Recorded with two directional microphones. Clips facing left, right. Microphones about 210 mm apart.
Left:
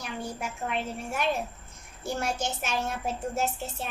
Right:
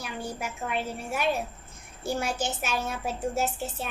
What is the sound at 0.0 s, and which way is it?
A woman's voice, 5° right (ahead or behind).